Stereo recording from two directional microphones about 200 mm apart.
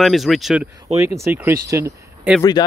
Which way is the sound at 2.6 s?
20° left (ahead or behind).